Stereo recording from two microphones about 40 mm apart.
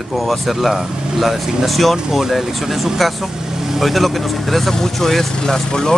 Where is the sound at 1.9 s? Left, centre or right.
Centre.